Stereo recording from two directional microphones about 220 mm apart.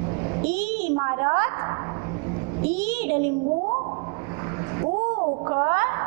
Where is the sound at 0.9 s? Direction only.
20° right (ahead or behind).